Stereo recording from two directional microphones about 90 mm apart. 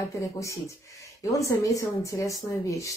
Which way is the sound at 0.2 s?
35° left (ahead or behind).